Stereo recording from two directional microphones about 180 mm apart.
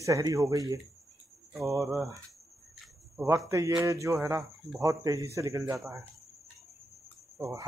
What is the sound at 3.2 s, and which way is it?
A man's voice, 15° right (ahead or behind).